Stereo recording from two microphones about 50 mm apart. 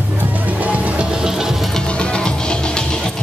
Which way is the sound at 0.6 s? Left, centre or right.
Right.